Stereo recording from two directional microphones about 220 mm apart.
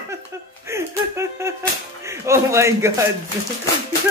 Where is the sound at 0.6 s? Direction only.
10° right (ahead or behind).